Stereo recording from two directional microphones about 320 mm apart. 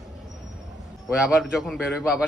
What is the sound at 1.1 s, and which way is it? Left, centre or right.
A man's voice, centre.